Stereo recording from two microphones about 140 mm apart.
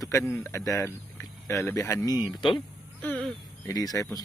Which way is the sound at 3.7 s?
25° left (ahead or behind).